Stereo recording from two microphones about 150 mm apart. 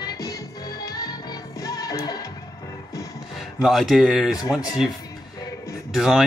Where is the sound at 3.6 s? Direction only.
Centre (ahead or behind).